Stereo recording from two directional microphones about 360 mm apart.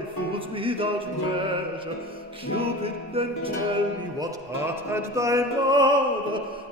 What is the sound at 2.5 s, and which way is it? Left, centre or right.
Music, centre.